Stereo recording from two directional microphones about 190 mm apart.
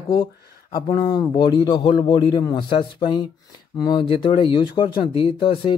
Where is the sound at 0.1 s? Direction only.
25° left (ahead or behind).